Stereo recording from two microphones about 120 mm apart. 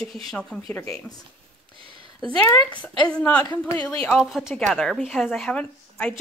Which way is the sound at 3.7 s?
10° left (ahead or behind).